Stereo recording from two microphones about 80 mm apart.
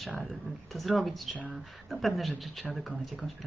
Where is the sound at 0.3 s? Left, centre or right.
Centre.